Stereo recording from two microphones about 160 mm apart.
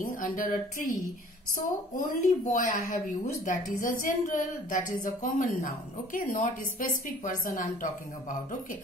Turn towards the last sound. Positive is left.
turn(degrees=55)  # may be behind; listen again after turning